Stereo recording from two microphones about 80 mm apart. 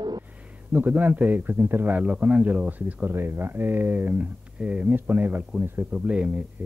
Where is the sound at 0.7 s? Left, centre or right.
Right.